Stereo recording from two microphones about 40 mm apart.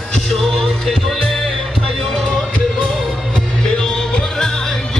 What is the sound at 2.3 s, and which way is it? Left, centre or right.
Music, left.